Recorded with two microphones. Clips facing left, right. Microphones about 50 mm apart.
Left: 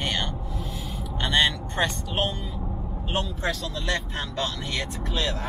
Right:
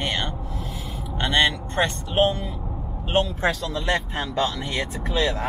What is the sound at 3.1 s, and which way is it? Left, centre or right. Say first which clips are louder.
Speech: right 6 dB; right.